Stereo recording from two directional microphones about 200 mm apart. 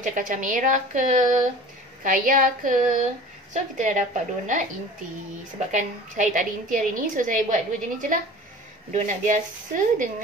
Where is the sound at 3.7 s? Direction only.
35° right (ahead or behind).